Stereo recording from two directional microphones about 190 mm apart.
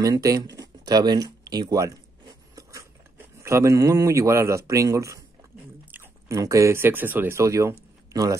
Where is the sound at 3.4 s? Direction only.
15° right (ahead or behind).